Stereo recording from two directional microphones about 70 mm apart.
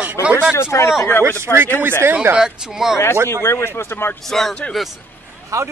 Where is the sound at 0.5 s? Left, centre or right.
Left.